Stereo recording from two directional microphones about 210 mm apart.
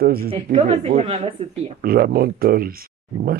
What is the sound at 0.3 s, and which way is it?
A woman's voice, 30° right (ahead or behind).